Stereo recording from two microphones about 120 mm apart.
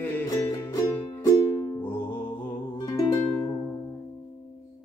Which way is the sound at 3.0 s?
35° left (ahead or behind).